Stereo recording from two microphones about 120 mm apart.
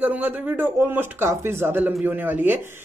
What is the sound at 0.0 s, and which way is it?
Speech, 15° right (ahead or behind).